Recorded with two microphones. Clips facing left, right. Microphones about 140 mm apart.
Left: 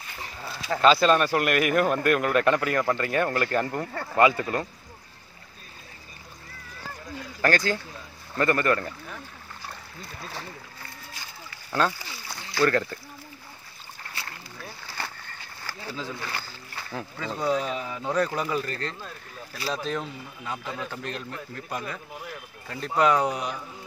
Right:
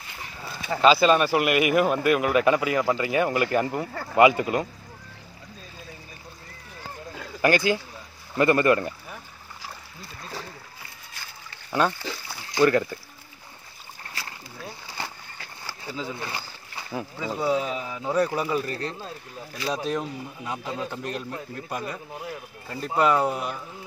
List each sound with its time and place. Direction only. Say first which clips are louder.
0.4 s speech: right 1 dB; 5° right (ahead or behind)
4.2 s speech: right 3 dB; 15° right (ahead or behind)
7.4 s speech: right 3 dB; 15° right (ahead or behind)
11.8 s speech: right 2 dB; 10° right (ahead or behind)
15.6 s speech: right 1 dB; 15° right (ahead or behind)